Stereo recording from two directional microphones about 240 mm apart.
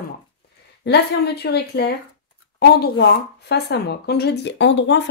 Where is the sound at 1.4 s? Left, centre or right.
Left.